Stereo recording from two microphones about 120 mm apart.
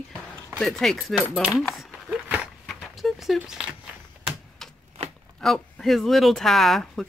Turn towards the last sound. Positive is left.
turn(degrees=0)  # may be behind; listen again after turning